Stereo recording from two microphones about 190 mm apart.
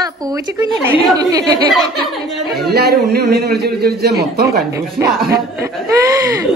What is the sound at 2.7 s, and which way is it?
A man's voice, 55° right (ahead or behind).